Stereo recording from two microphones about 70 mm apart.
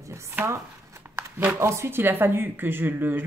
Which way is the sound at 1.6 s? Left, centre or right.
Right.